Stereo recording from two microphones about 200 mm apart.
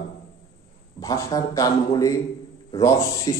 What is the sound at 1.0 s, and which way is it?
A man's voice, 15° left (ahead or behind).